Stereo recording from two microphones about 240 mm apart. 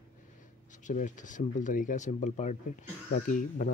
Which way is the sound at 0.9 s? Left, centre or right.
Left.